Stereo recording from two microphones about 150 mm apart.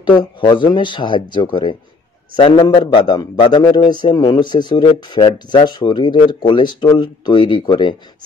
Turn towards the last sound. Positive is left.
turn(degrees=30)  # may be behind; listen again after turning